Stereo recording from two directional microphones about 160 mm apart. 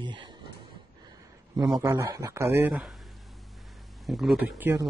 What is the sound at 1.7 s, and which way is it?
Speech, 20° right (ahead or behind).